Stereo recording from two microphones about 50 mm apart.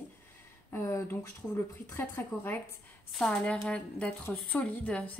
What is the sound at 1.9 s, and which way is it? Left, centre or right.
Speech, left.